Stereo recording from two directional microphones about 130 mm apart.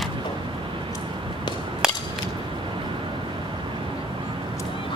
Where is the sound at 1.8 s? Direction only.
5° right (ahead or behind).